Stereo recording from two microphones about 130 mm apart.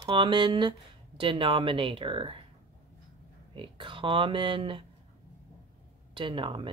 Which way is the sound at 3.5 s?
40° right (ahead or behind).